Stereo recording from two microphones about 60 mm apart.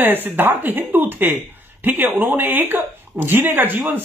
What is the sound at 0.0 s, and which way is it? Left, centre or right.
Speech, right.